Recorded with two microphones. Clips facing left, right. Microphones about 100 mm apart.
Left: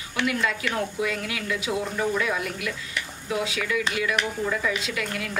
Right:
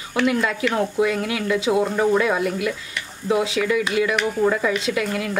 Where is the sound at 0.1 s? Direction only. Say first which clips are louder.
Right 5 dB; 30° right (ahead or behind).